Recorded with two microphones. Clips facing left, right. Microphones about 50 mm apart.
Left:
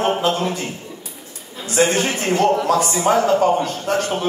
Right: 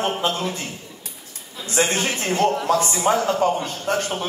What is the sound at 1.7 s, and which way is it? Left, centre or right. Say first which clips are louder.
A man's voice: left 4 dB; left.